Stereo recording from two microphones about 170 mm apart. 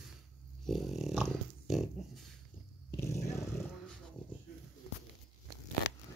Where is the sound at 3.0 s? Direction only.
15° left (ahead or behind).